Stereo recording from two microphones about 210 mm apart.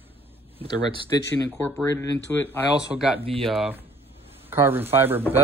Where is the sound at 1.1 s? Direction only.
15° left (ahead or behind).